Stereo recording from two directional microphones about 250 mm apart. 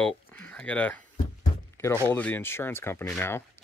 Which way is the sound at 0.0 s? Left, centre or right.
Centre.